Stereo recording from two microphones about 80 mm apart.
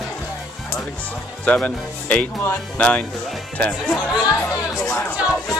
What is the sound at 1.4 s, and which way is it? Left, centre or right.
Speech, centre.